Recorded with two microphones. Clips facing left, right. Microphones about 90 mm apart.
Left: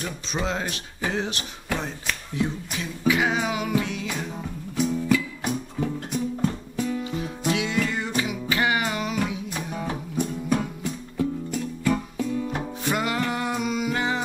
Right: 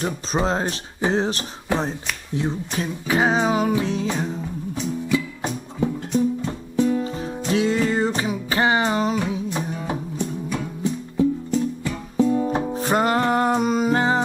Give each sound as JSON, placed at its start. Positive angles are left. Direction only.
{"t": 0.0, "sound": "speech", "side_deg": -35}
{"t": 5.1, "sound": "music", "side_deg": -30}
{"t": 12.2, "sound": "music", "side_deg": -35}